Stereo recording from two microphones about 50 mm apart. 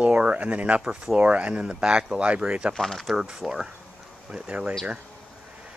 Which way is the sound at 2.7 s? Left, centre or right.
Centre.